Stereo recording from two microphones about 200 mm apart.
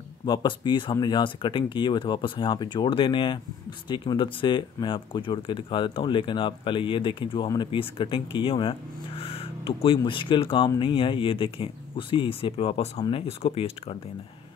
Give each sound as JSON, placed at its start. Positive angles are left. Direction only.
{"t": 0.2, "sound": "speech", "side_deg": 25}